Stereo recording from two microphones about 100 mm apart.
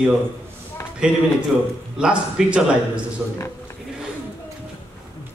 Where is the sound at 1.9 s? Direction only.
10° right (ahead or behind).